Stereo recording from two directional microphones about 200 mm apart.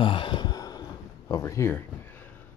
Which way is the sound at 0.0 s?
25° left (ahead or behind).